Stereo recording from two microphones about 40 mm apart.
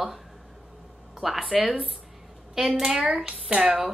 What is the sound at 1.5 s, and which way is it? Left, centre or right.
Speech, centre.